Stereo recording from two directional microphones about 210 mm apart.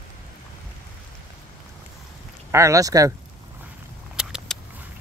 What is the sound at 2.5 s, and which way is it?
Speech, 15° right (ahead or behind).